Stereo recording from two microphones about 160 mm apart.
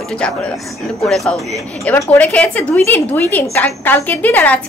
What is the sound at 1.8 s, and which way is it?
A woman's voice, 10° left (ahead or behind).